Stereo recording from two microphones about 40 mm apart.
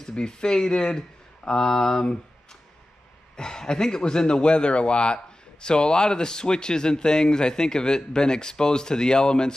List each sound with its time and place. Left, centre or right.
0.0 s speech: centre
3.3 s speech: centre